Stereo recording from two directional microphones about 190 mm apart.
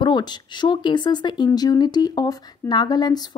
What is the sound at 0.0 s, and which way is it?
Speech, 25° left (ahead or behind).